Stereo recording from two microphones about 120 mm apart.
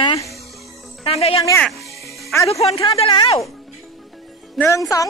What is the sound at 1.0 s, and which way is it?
Cricket, 55° left (ahead or behind).